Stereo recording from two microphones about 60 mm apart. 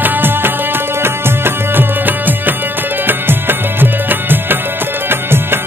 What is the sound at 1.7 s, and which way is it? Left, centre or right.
Music, right.